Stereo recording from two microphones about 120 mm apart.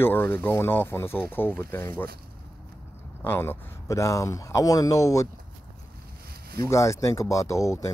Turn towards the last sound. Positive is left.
turn(degrees=25)  # may be behind; listen again after turning